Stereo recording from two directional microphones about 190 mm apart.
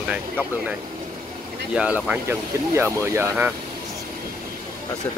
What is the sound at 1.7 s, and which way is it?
Speech, 5° right (ahead or behind).